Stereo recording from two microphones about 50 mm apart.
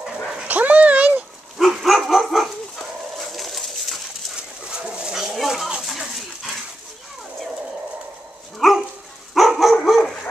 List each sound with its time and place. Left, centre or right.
0.5 s dog: right
1.6 s dog: centre
3.2 s pigeon: centre
4.4 s dog: centre
4.8 s bird: centre
5.9 s a sound: centre
8.5 s dog: centre